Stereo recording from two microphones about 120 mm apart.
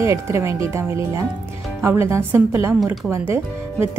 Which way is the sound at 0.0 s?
25° right (ahead or behind).